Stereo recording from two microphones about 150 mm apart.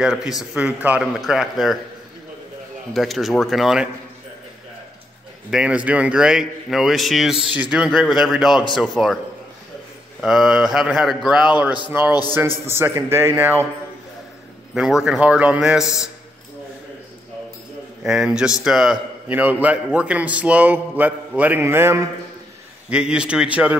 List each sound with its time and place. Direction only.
0.0 s speech: 5° right (ahead or behind)
2.9 s speech: centre (ahead or behind)
5.5 s speech: 5° right (ahead or behind)
10.2 s a man's voice: 5° right (ahead or behind)
14.7 s speech: centre (ahead or behind)
18.0 s a man's voice: 5° right (ahead or behind)
22.8 s a man's voice: 5° right (ahead or behind)